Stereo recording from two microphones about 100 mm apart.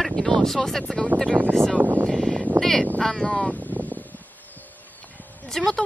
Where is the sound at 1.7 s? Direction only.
15° right (ahead or behind).